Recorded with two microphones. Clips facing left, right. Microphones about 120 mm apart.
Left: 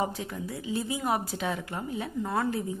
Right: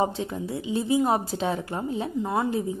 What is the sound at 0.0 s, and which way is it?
A woman's voice, 25° right (ahead or behind).